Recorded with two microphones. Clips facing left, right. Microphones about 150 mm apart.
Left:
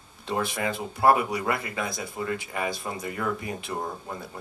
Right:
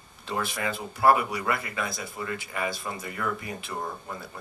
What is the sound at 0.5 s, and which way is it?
Speech, centre (ahead or behind).